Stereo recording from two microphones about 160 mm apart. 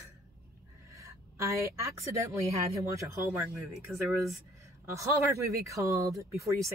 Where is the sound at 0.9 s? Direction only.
20° right (ahead or behind).